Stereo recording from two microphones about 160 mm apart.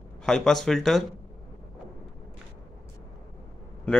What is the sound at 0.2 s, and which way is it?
Speech, 5° left (ahead or behind).